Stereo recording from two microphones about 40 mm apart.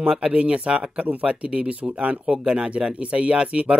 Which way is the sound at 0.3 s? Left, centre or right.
Right.